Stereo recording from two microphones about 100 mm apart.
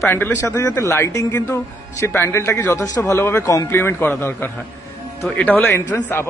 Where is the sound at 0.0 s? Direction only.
20° left (ahead or behind).